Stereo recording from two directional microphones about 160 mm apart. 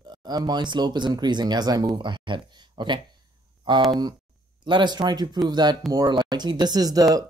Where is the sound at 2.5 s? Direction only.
30° right (ahead or behind).